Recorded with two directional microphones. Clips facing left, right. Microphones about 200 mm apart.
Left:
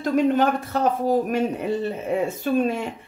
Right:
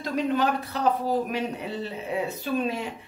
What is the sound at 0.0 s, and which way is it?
A woman's voice, 50° left (ahead or behind).